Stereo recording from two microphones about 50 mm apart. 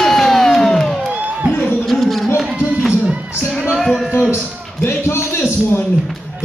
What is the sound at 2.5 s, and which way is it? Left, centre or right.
Music, right.